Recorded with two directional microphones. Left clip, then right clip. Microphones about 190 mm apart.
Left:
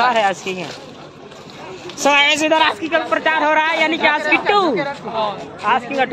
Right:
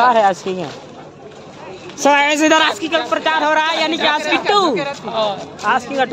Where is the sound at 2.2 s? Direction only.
55° right (ahead or behind).